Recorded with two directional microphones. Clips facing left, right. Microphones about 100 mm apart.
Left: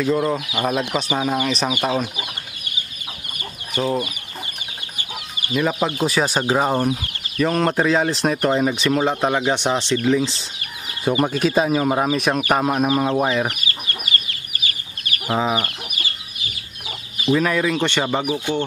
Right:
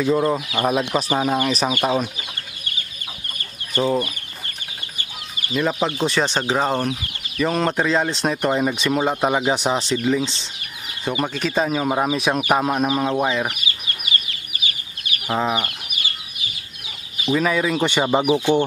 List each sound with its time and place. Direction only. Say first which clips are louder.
0.0 s speech: right 1 dB; 5° right (ahead or behind)
5.5 s speech: left 1 dB; 5° left (ahead or behind)
13.5 s chicken: left 1 dB; 45° left (ahead or behind)
15.2 s speech: left 1 dB; centre (ahead or behind)
17.3 s speech: left 1 dB; centre (ahead or behind)
18.1 s speech: right 4 dB; 20° right (ahead or behind)